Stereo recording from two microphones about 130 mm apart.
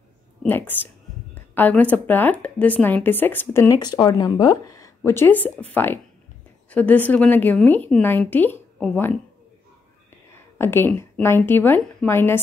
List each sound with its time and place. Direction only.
0.5 s speech: 15° left (ahead or behind)
3.8 s a woman's voice: 30° left (ahead or behind); by 9.1 s 15° left (ahead or behind)
10.6 s speech: 20° left (ahead or behind)